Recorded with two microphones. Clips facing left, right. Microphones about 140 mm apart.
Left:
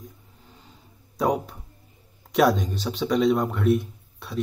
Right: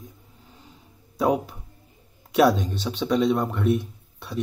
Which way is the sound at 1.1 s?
Centre (ahead or behind).